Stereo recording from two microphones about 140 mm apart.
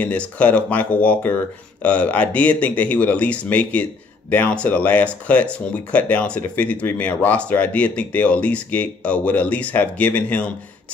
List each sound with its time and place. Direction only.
0.0 s speech: 10° left (ahead or behind)